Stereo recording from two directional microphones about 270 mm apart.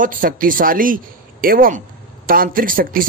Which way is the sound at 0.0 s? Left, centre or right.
Right.